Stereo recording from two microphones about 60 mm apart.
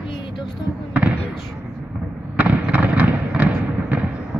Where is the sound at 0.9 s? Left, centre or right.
Centre.